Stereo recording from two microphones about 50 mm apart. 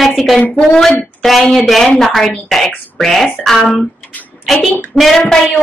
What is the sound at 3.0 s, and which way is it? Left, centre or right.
Speech, centre.